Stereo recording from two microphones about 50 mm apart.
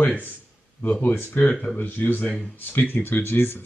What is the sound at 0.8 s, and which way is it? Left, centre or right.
Speech, left.